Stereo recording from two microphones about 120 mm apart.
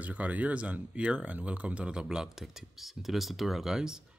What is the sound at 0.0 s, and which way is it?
Speech, 10° right (ahead or behind).